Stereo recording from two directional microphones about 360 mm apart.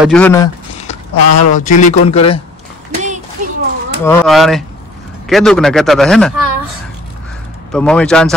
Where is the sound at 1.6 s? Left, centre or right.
Centre.